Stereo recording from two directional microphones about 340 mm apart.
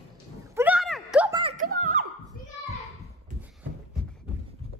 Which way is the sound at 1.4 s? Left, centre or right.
Right.